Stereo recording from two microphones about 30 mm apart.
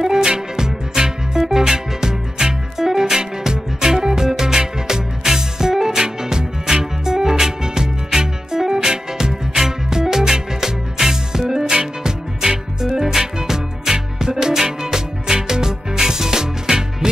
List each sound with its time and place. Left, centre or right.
0.0 s music: centre